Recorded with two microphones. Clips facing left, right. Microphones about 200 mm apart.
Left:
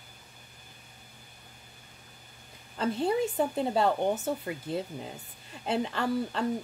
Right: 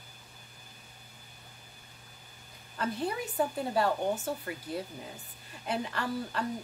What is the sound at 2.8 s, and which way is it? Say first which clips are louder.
A woman's voice: left 6 dB; 25° left (ahead or behind).